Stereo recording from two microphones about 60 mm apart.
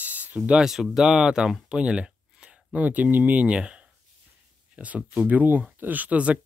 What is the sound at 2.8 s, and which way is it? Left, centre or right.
Speech, right.